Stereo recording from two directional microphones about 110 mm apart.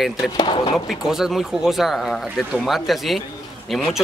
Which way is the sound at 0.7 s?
5° right (ahead or behind).